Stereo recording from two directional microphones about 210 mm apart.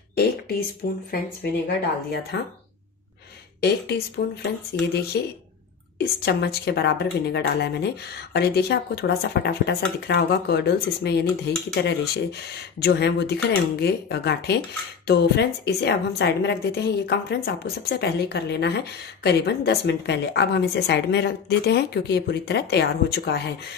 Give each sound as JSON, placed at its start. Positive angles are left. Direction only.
{"t": 0.1, "sound": "a sound", "side_deg": 50}
{"t": 0.8, "sound": "speech", "side_deg": 45}
{"t": 2.3, "sound": "speech", "side_deg": 55}
{"t": 3.6, "sound": "speech", "side_deg": 50}